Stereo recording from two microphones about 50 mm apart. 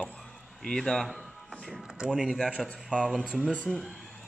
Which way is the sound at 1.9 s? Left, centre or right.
Centre.